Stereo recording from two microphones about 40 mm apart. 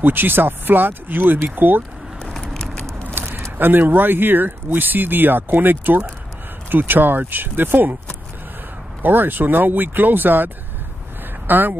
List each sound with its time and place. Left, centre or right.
0.0 s speech: right
2.3 s vehicle: centre
3.5 s speech: right
9.0 s speech: right